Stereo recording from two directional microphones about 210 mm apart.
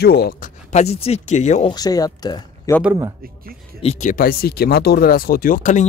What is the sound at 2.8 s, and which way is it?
Speech, 10° right (ahead or behind).